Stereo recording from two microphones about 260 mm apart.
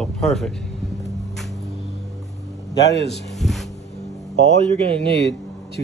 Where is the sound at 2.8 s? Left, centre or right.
Left.